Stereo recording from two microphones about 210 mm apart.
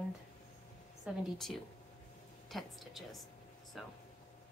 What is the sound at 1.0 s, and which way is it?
A woman's voice, centre (ahead or behind).